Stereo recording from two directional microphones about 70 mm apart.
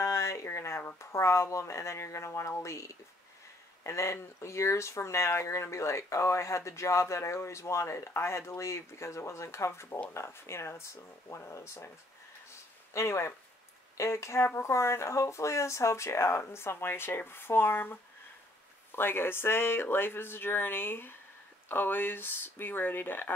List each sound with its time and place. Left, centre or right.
0.0 s speech: left
12.9 s speech: left